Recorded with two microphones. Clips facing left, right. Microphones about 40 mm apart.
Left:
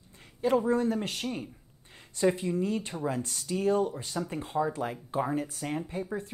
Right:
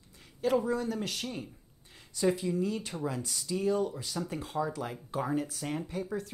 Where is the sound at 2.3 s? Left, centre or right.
Left.